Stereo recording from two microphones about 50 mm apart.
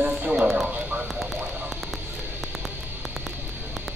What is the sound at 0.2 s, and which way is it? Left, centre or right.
Music, right.